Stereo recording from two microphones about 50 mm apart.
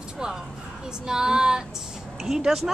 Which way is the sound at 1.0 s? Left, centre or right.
Centre.